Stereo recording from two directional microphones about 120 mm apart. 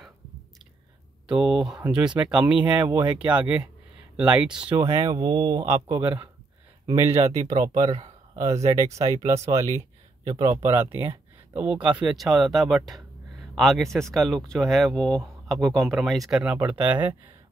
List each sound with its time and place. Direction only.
1.2 s speech: 5° right (ahead or behind)
4.7 s speech: 25° right (ahead or behind)